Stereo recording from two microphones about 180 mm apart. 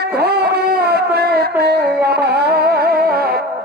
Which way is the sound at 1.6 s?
65° right (ahead or behind).